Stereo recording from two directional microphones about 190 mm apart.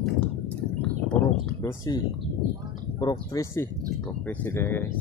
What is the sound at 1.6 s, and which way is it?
Speech, 15° left (ahead or behind).